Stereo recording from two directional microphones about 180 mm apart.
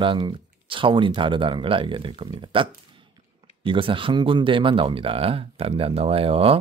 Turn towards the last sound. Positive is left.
turn(degrees=-30)  # may be behind; listen again after turning